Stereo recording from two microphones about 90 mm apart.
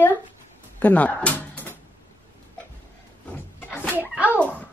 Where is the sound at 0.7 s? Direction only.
15° left (ahead or behind).